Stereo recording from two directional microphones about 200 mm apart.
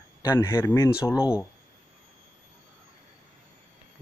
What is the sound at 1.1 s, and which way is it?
Speech, 5° right (ahead or behind).